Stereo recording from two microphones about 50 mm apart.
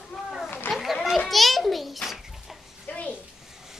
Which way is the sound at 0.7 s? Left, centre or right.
Centre.